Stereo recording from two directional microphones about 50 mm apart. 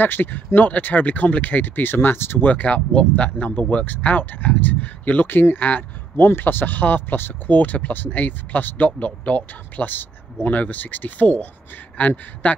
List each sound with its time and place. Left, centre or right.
0.0 s speech: left
2.4 s speech: left